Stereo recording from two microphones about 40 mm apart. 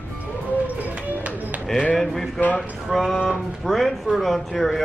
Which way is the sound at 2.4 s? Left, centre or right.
Left.